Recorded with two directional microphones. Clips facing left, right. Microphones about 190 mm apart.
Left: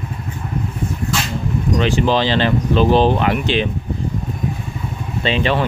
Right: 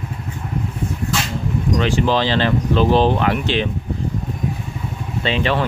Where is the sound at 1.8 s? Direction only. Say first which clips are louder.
Left 2 dB; 20° left (ahead or behind).